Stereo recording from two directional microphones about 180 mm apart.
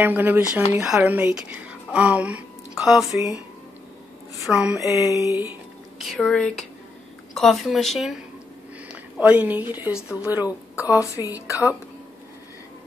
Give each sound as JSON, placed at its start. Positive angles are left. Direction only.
{"t": 0.0, "sound": "a woman's voice", "side_deg": -10}
{"t": 4.5, "sound": "speech", "side_deg": -5}
{"t": 5.4, "sound": "a sound", "side_deg": -10}
{"t": 6.1, "sound": "a woman's voice", "side_deg": 5}
{"t": 10.8, "sound": "a woman's voice", "side_deg": 15}